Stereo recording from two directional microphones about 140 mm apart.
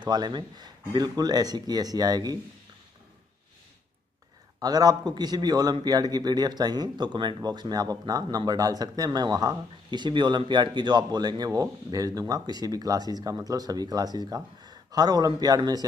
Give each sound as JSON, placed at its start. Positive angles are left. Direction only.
{"t": 0.0, "sound": "a man's voice", "side_deg": -30}
{"t": 4.6, "sound": "a man's voice", "side_deg": -30}